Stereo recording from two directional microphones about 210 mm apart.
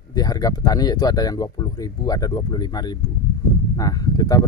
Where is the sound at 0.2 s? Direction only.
15° left (ahead or behind).